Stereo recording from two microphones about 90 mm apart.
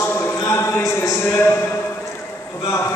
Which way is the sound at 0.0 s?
30° left (ahead or behind).